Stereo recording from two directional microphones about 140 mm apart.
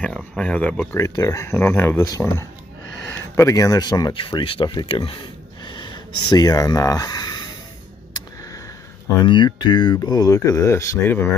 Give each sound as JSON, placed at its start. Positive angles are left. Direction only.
{"t": 0.4, "sound": "speech", "side_deg": 10}
{"t": 0.9, "sound": "speech", "side_deg": 20}
{"t": 9.2, "sound": "speech", "side_deg": 35}